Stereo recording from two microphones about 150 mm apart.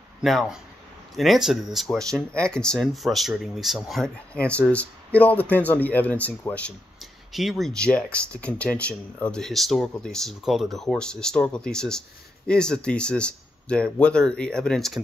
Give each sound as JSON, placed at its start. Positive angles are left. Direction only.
{"t": 0.2, "sound": "speech", "side_deg": 0}